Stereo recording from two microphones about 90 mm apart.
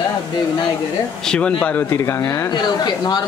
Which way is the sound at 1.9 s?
30° left (ahead or behind).